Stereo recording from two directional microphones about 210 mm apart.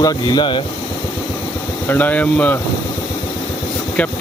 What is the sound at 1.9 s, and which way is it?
Speech, 10° left (ahead or behind).